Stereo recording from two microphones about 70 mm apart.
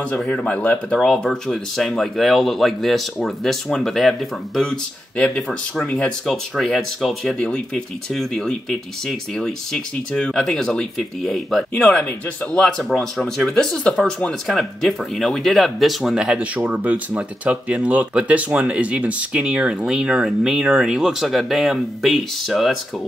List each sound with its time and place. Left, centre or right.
0.1 s speech: centre
7.3 s speech: centre
11.7 s speech: left
12.5 s speech: centre
16.3 s speech: right; by 22.8 s centre